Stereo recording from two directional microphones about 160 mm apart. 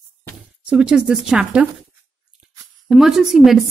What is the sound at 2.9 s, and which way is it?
Speech, centre (ahead or behind).